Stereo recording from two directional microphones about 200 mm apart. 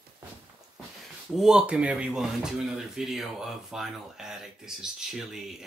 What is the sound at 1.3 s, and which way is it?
Speech, 5° right (ahead or behind).